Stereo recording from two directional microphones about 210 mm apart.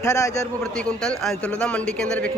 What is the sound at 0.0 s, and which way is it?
Speech, 15° left (ahead or behind).